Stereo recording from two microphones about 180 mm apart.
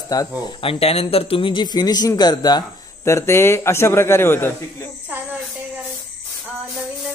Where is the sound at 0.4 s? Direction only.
30° left (ahead or behind); by 4.8 s 10° left (ahead or behind).